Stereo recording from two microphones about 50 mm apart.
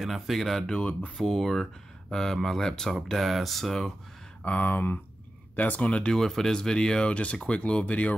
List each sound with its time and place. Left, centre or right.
0.0 s speech: centre
4.5 s speech: left
5.6 s speech: left
6.1 s speech: centre; by 8.1 s left